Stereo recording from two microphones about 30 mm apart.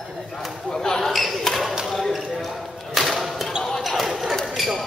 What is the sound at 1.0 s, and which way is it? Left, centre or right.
Basketball bounce, centre.